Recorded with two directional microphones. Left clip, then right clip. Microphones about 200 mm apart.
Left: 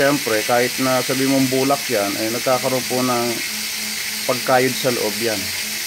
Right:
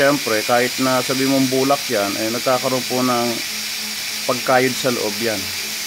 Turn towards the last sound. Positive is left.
turn(degrees=-10)  # may be behind; listen again after turning